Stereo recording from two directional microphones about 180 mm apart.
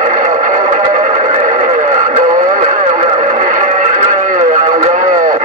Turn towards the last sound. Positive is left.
turn(degrees=-45)  # may be behind; listen again after turning